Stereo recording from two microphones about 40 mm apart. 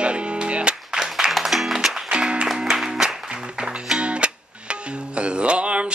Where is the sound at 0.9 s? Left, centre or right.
Centre.